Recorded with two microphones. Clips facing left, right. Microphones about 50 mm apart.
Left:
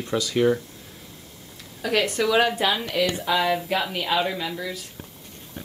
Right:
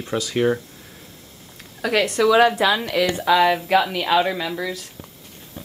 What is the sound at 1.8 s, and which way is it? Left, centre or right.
Speech, right.